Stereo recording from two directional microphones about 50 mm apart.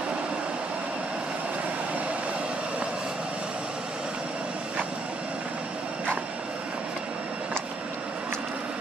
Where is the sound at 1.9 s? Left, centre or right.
Right.